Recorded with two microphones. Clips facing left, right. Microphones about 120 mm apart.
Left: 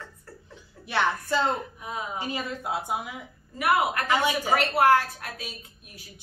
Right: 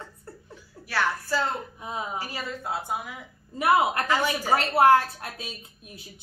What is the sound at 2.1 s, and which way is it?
Speech, 20° left (ahead or behind).